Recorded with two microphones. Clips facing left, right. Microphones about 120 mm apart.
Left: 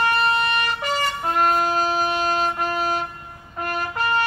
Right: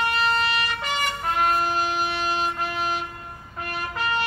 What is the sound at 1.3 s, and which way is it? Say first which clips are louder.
Train: left 3 dB; 45° left (ahead or behind).